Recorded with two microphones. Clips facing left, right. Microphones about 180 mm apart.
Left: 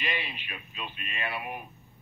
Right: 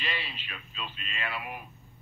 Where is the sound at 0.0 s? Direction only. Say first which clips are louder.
Left 2 dB; 15° left (ahead or behind).